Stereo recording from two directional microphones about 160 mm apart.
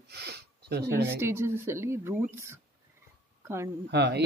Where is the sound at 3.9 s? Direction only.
90° right.